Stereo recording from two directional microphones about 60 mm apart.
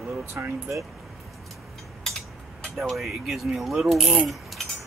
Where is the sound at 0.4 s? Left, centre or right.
Right.